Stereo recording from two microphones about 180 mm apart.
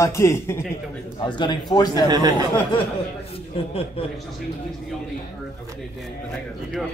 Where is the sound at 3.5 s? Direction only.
30° left (ahead or behind).